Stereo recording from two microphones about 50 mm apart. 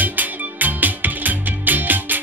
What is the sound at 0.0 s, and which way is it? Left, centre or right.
Music, right.